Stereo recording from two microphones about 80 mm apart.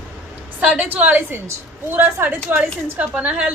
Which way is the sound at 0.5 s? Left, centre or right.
Centre.